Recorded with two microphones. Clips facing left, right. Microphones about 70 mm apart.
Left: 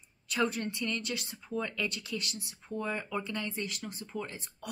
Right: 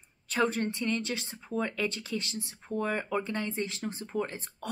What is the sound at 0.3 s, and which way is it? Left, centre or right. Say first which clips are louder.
A woman's voice: right 3 dB; right.